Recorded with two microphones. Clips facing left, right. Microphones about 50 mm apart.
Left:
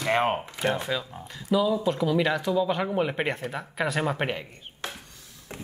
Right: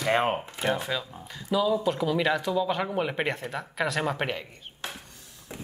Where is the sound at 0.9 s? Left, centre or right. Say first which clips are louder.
Left 1 dB; centre.